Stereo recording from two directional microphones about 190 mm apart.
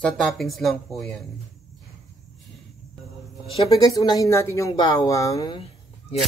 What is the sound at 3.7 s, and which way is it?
A woman's voice, 20° left (ahead or behind).